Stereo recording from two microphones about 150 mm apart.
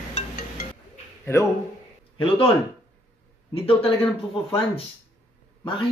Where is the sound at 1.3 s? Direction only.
20° left (ahead or behind).